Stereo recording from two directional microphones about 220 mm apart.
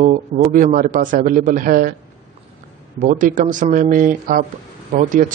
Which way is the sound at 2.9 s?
35° right (ahead or behind).